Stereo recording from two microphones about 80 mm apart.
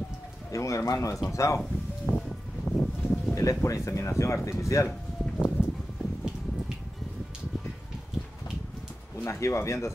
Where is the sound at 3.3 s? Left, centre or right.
Left.